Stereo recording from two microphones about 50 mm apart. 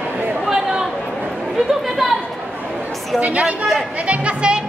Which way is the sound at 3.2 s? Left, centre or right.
Right.